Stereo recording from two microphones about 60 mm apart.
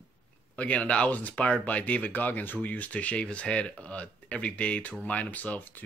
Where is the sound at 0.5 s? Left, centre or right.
Left.